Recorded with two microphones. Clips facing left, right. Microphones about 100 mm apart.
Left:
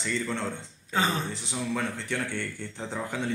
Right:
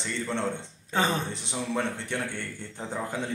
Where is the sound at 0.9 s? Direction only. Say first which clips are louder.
Right 1 dB; 40° right (ahead or behind).